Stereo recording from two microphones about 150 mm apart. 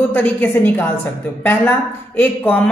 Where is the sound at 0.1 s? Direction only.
10° left (ahead or behind).